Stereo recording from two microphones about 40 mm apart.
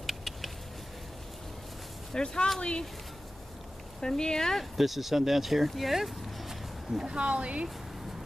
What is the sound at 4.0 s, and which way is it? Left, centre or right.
Speech, centre.